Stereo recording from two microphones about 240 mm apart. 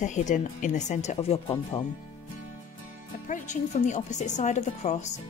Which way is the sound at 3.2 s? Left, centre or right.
Left.